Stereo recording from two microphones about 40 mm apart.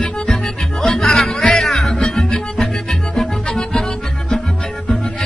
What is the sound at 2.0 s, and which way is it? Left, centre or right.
Music, centre.